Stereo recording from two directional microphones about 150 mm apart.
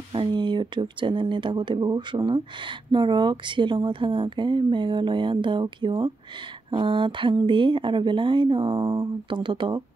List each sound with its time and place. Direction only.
0.1 s speech: 35° right (ahead or behind)